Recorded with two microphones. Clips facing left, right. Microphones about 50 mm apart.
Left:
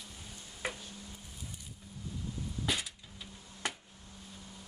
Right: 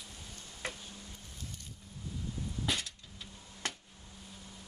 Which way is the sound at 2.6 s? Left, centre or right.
Centre.